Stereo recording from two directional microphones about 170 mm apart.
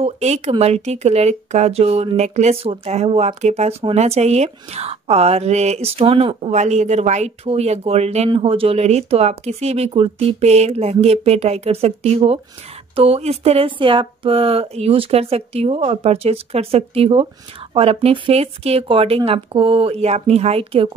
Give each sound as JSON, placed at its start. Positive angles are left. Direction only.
{"t": 0.0, "sound": "speech", "side_deg": -40}